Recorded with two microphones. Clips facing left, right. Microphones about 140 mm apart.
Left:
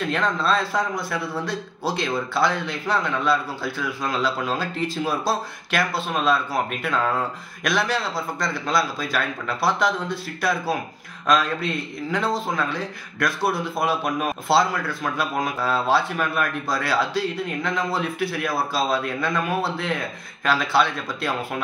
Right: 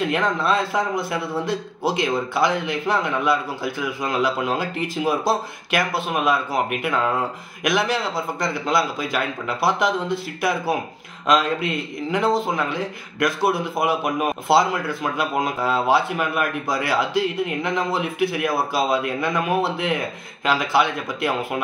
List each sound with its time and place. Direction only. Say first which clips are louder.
0.0 s a man's voice: right 2 dB; 20° right (ahead or behind)